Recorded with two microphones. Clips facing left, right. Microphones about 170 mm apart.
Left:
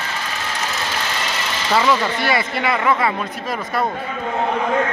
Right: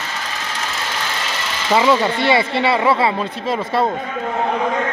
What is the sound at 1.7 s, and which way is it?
Speech, 20° right (ahead or behind).